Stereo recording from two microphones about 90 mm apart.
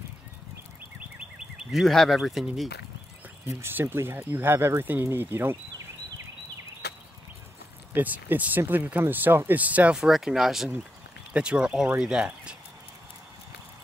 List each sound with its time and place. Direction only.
1.6 s speech: centre (ahead or behind)
3.4 s speech: 25° right (ahead or behind)
7.9 s speech: 20° right (ahead or behind)
10.0 s speech: 5° right (ahead or behind)